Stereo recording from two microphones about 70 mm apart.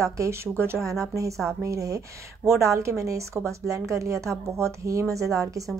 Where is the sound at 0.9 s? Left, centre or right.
Right.